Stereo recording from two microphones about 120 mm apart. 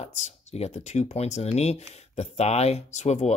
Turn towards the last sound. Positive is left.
turn(degrees=65)  # may be behind; listen again after turning